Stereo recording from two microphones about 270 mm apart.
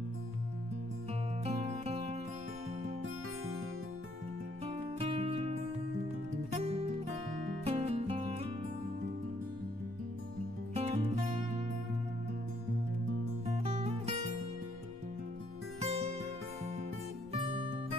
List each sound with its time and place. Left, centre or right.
1.4 s music: right
4.6 s music: right
10.7 s music: right
13.5 s music: right
15.8 s music: right
17.3 s music: centre